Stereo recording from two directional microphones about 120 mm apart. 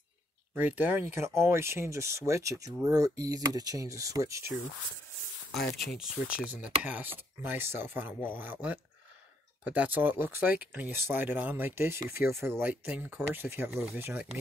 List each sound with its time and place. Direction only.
0.6 s speech: 15° right (ahead or behind)
5.9 s speech: 5° right (ahead or behind)